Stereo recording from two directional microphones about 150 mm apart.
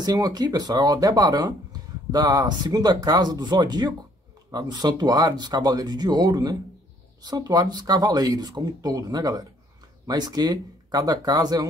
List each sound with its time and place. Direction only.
0.0 s speech: 25° right (ahead or behind)